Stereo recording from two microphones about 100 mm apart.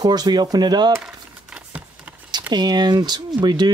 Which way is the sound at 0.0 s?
45° right (ahead or behind).